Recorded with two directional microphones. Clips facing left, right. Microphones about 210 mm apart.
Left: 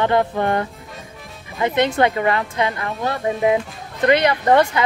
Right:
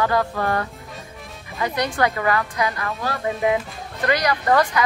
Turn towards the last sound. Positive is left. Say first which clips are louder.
# left 3 dB
turn(degrees=25)  # may be behind; listen again after turning